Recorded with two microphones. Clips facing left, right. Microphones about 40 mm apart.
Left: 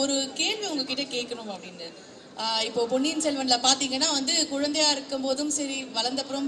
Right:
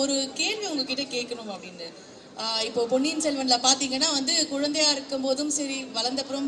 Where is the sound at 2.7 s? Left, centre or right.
Left.